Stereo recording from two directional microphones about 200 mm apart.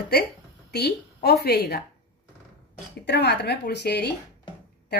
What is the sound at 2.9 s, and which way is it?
Speech, 60° left (ahead or behind).